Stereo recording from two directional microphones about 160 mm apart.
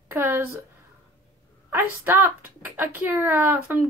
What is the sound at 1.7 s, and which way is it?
A woman's voice, 10° right (ahead or behind).